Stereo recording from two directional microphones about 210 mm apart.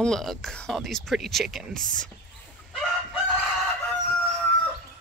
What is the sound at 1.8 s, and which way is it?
Speech, 40° right (ahead or behind).